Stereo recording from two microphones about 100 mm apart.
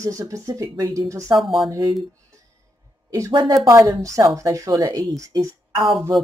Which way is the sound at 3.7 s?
30° right (ahead or behind).